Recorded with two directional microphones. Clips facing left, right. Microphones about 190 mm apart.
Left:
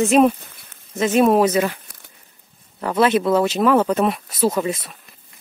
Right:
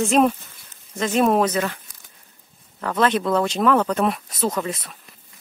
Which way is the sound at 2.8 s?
10° left (ahead or behind).